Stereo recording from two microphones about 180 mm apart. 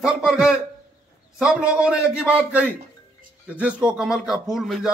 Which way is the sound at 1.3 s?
5° right (ahead or behind).